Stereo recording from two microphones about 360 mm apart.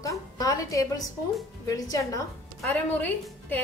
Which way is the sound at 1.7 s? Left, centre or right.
Centre.